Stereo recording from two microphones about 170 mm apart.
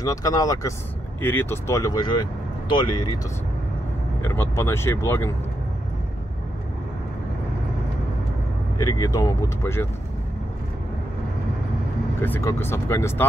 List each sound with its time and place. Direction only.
0.0 s speech: 20° left (ahead or behind)
4.2 s speech: 15° left (ahead or behind)
8.7 s speech: 20° left (ahead or behind)
12.2 s speech: 15° left (ahead or behind)